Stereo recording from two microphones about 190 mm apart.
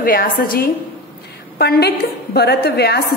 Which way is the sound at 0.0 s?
50° left (ahead or behind).